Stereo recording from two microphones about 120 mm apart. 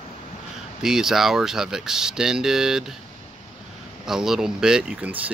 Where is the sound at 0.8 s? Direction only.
5° right (ahead or behind).